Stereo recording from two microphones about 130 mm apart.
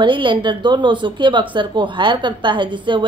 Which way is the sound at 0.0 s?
40° right (ahead or behind).